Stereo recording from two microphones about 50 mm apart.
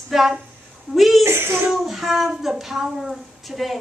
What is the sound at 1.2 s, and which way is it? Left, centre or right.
Speech, right.